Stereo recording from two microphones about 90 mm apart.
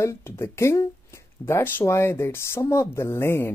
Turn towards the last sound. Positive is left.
turn(degrees=30)  # may be behind; listen again after turning